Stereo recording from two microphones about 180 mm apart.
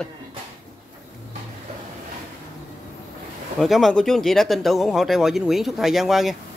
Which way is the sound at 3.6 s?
Centre (ahead or behind).